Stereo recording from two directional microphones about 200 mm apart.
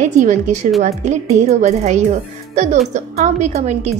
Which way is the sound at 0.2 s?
40° right (ahead or behind).